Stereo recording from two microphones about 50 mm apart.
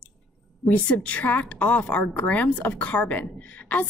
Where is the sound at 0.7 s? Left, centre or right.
Left.